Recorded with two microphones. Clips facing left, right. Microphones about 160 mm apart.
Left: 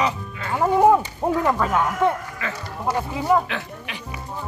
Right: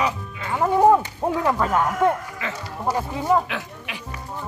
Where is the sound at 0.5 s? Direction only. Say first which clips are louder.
Even; 5° left (ahead or behind).